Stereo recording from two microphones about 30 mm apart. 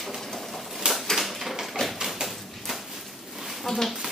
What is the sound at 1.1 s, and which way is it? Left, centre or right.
Typewriter, centre.